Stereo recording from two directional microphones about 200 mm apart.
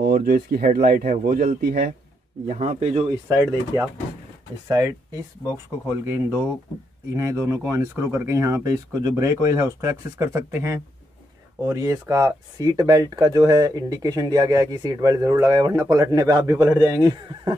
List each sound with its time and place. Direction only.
0.0 s speech: 45° right (ahead or behind)
3.3 s speech: 15° right (ahead or behind)